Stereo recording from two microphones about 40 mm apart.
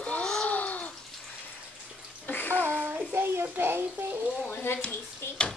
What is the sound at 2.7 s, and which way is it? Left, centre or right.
Child singing, right.